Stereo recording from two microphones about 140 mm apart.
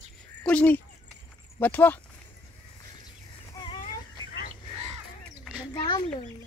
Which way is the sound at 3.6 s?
25° left (ahead or behind).